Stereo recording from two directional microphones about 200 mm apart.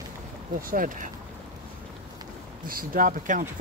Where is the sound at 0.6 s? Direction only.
45° right (ahead or behind).